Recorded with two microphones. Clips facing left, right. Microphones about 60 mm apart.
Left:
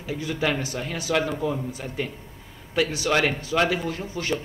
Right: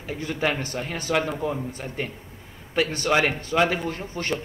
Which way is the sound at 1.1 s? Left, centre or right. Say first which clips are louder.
Even; centre.